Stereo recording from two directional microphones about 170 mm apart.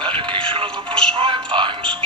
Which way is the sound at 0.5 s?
30° right (ahead or behind).